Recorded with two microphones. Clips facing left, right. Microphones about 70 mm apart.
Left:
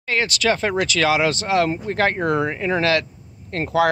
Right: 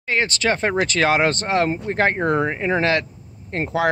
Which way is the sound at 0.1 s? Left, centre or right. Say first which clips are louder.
Even; right.